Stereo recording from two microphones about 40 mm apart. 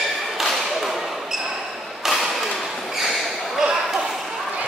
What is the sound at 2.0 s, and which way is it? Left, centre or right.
Thump, centre.